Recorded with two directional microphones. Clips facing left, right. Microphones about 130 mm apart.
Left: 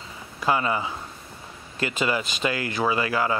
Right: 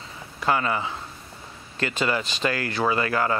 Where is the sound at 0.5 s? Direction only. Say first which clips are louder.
Even; 15° left (ahead or behind).